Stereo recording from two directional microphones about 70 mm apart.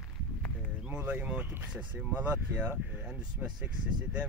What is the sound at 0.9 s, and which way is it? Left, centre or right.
Speech, right.